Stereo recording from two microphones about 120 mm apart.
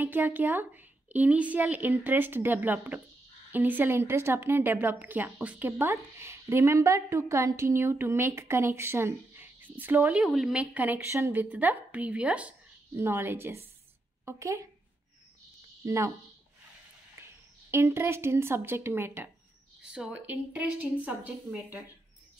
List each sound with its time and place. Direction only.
0.0 s a woman's voice: 15° right (ahead or behind)
10.1 s a woman's voice: 5° right (ahead or behind); by 14.7 s 25° right (ahead or behind)
15.8 s speech: 25° right (ahead or behind)
17.6 s a woman's voice: 20° right (ahead or behind)
19.8 s a woman's voice: 5° right (ahead or behind)